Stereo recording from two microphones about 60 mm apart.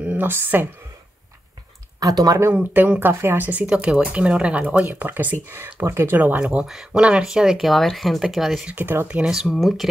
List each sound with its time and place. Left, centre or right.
0.2 s speech: right
2.0 s speech: right
2.5 s speech: right
3.6 s speech: centre; by 5.3 s right
5.5 s speech: right
6.1 s speech: right
6.4 s speech: centre
7.0 s speech: centre
8.7 s speech: right
9.6 s speech: centre